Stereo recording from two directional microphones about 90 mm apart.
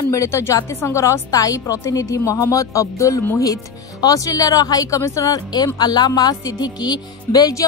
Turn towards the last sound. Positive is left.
turn(degrees=40)  # may be behind; listen again after turning